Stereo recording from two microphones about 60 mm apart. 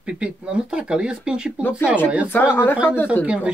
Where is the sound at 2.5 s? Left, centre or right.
Left.